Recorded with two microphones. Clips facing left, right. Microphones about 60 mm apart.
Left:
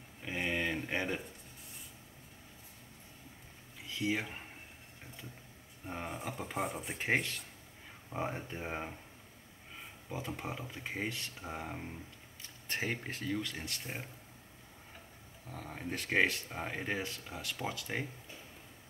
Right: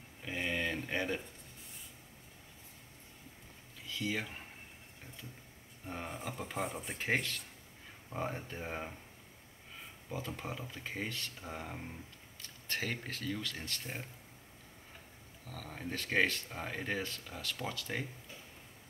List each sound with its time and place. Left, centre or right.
0.2 s a sound: centre
3.8 s speech: left
5.9 s speech: centre
7.0 s speech: centre
10.1 s speech: centre
11.5 s speech: centre
12.4 s speech: left
15.4 s speech: left